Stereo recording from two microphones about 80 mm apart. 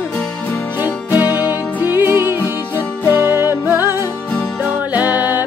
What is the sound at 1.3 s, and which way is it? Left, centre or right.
Music, right.